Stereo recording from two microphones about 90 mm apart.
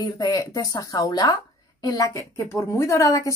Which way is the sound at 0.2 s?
40° left (ahead or behind).